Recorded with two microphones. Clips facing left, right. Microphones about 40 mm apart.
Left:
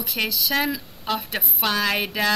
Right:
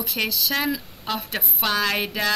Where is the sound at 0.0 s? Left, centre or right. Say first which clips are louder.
Even; centre.